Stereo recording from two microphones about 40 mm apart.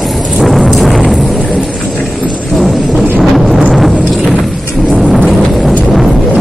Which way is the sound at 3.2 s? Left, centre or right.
Centre.